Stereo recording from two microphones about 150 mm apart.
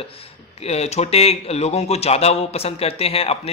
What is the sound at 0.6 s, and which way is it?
A man's voice, 45° left (ahead or behind).